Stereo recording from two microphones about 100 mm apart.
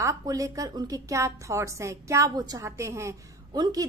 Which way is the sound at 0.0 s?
35° right (ahead or behind).